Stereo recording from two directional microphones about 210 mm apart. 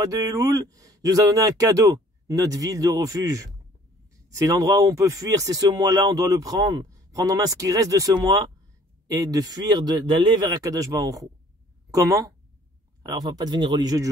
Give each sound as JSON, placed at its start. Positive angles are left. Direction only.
{"t": 0.0, "sound": "speech", "side_deg": -15}